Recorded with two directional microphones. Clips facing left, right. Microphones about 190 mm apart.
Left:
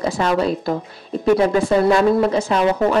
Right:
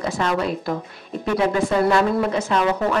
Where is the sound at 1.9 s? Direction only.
35° left (ahead or behind).